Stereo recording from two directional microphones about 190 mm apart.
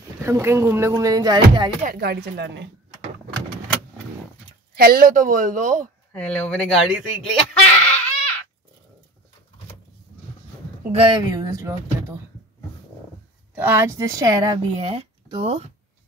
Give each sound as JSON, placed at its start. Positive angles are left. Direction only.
{"t": 0.2, "sound": "speech", "side_deg": -15}
{"t": 1.8, "sound": "speech", "side_deg": -50}
{"t": 4.7, "sound": "speech", "side_deg": -55}
{"t": 6.1, "sound": "speech", "side_deg": 5}
{"t": 10.9, "sound": "speech", "side_deg": -25}
{"t": 13.6, "sound": "speech", "side_deg": -10}